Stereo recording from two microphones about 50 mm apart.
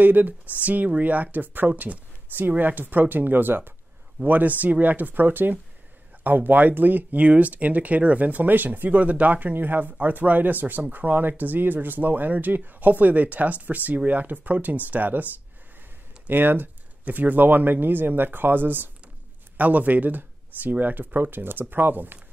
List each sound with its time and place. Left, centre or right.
0.0 s speech: right
4.2 s speech: right
16.3 s speech: right